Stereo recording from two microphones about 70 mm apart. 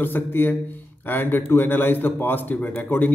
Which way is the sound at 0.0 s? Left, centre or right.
Left.